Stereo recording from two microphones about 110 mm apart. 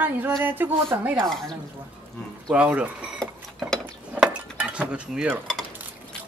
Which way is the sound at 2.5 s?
10° right (ahead or behind).